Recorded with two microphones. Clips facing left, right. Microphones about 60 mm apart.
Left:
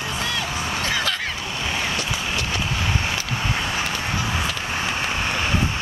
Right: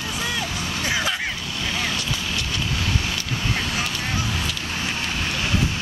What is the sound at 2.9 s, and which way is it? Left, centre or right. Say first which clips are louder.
Vehicle: left 2 dB; left.